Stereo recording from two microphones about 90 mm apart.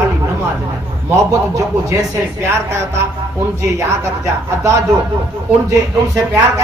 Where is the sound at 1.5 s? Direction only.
35° right (ahead or behind).